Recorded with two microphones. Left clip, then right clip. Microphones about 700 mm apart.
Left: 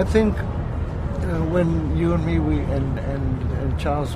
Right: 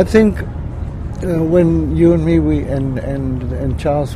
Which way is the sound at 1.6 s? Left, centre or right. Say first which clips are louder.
Right 9 dB; right.